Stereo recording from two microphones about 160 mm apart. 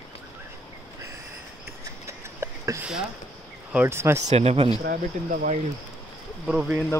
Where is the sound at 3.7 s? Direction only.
10° right (ahead or behind).